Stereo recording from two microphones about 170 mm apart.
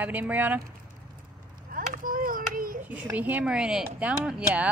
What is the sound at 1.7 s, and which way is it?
Children playing, 55° right (ahead or behind).